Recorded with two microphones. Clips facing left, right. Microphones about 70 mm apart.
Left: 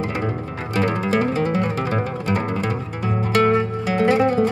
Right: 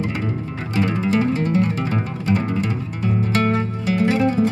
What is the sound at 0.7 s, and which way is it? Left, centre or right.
Music, left.